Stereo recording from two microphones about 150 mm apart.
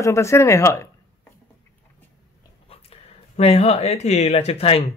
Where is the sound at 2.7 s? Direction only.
40° left (ahead or behind).